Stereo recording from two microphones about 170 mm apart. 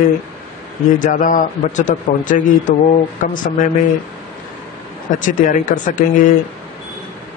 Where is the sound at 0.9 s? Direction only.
50° left (ahead or behind).